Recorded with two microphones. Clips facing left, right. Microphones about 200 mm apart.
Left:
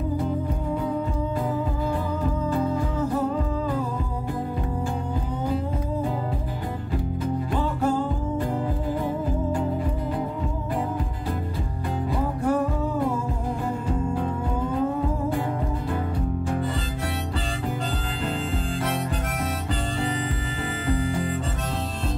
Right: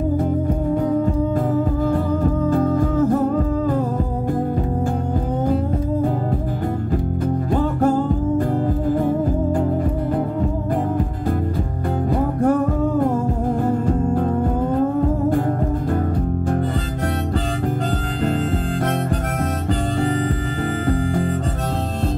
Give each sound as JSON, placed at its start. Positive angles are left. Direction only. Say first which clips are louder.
{"t": 2.5, "sound": "music", "louder": "right 7 dB", "side_deg": -50}
{"t": 7.5, "sound": "music", "louder": "right 7 dB", "side_deg": -50}
{"t": 12.1, "sound": "music", "louder": "right 7 dB", "side_deg": -50}
{"t": 13.7, "sound": "music", "louder": "right 6 dB", "side_deg": -50}
{"t": 20.8, "sound": "music", "louder": "right 4 dB", "side_deg": -45}